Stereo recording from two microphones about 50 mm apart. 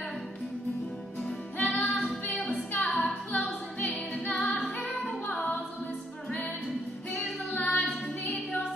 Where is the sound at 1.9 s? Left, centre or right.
Centre.